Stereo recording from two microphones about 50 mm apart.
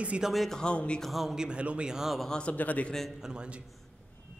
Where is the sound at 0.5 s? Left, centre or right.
Centre.